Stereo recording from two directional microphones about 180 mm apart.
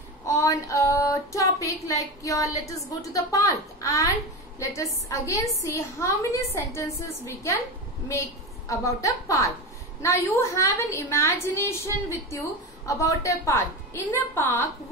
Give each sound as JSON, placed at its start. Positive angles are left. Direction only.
{"t": 0.3, "sound": "female singing", "side_deg": 15}
{"t": 5.1, "sound": "a woman's voice", "side_deg": 15}
{"t": 8.6, "sound": "a woman's voice", "side_deg": 20}